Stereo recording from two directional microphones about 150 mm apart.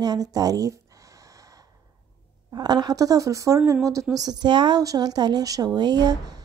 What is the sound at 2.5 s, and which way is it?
A woman's voice, 25° right (ahead or behind).